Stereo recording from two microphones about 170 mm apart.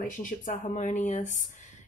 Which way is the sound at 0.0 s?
50° left (ahead or behind).